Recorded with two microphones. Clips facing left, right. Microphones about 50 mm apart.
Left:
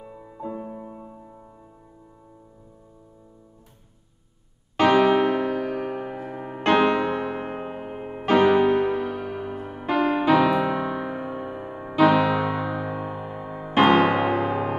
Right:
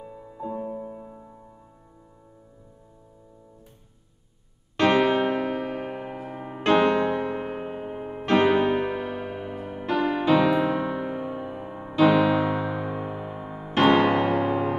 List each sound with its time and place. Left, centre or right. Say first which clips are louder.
0.0 s music: even; centre
4.7 s music: left 3 dB; centre
7.1 s music: even; centre
7.3 s music: even; centre
8.4 s music: left 3 dB; centre
10.5 s music: even; centre